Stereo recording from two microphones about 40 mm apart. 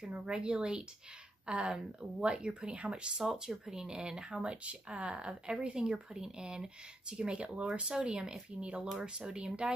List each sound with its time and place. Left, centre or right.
0.0 s speech: centre
3.2 s speech: centre